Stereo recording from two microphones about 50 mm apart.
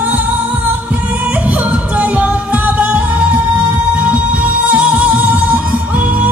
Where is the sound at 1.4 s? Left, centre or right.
Right.